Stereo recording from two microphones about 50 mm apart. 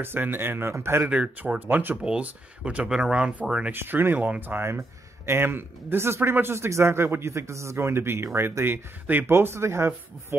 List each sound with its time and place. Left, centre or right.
0.0 s speech: right
2.0 s speech: right
3.7 s speech: right
4.6 s speech: right
9.3 s speech: right